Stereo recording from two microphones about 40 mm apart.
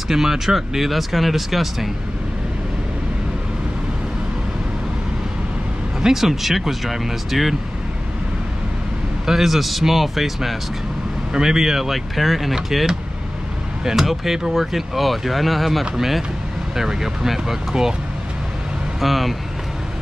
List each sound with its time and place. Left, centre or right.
0.1 s speech: centre
6.0 s speech: centre
9.2 s speech: centre
13.8 s speech: centre
18.9 s speech: centre